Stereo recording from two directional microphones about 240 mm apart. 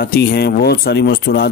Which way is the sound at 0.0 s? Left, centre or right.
Left.